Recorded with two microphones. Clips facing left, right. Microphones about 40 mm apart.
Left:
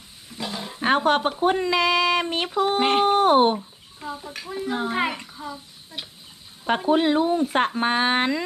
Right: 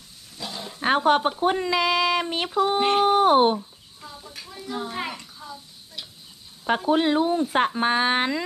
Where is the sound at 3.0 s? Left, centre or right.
Left.